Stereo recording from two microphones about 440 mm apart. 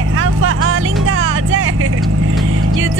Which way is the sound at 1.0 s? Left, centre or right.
Right.